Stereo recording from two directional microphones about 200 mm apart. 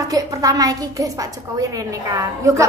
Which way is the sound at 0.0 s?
15° right (ahead or behind).